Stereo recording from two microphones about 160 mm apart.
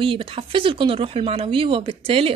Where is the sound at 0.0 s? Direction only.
35° right (ahead or behind).